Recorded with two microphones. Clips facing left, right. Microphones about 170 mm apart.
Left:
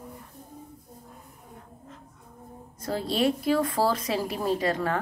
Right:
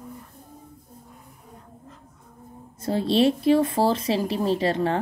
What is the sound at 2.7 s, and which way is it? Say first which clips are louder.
A woman's voice: right 6 dB; 25° right (ahead or behind).